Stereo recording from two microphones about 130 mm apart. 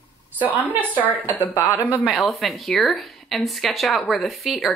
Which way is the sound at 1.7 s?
10° right (ahead or behind).